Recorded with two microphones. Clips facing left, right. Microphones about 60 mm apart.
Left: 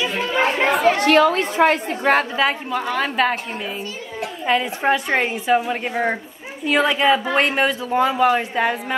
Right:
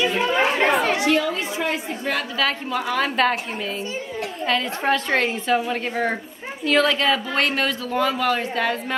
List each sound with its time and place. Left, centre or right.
0.0 s chatter: centre
1.0 s a woman's voice: left
2.9 s a woman's voice: centre
4.5 s a woman's voice: centre